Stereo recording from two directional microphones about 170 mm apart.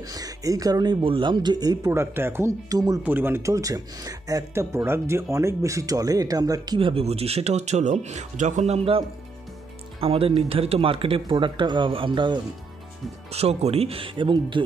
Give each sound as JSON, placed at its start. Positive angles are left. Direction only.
{"t": 0.0, "sound": "speech", "side_deg": -20}
{"t": 13.3, "sound": "speech", "side_deg": -40}